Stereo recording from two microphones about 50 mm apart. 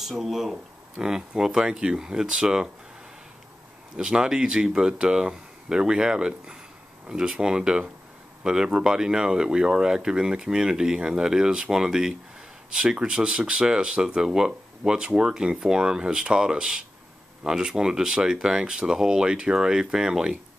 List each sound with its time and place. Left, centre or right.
0.0 s speech: centre
3.9 s speech: centre